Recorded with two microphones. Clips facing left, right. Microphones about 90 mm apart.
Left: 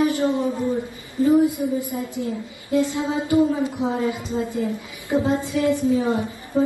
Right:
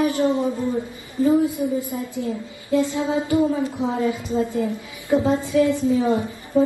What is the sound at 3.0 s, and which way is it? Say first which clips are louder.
Speech: right 2 dB; 20° right (ahead or behind).